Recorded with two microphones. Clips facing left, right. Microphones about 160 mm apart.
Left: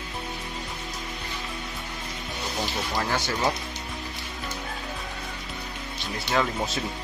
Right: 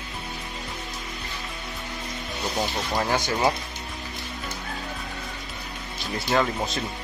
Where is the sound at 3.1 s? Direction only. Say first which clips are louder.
Right 3 dB; 15° right (ahead or behind).